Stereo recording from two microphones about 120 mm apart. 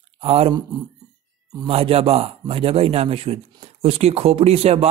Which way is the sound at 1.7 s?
55° right (ahead or behind).